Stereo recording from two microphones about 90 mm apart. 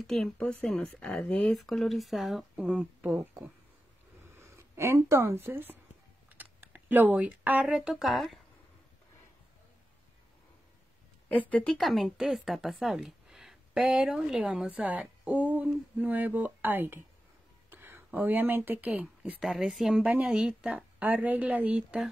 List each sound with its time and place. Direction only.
0.0 s speech: 5° left (ahead or behind); by 3.3 s 15° right (ahead or behind)
4.4 s speech: 30° right (ahead or behind)
6.2 s typing: 20° right (ahead or behind)
7.6 s speech: 5° right (ahead or behind)
11.2 s a woman's voice: 15° left (ahead or behind)
11.6 s a woman's voice: centre (ahead or behind); by 19.3 s 15° right (ahead or behind)
19.4 s a woman's voice: 5° right (ahead or behind)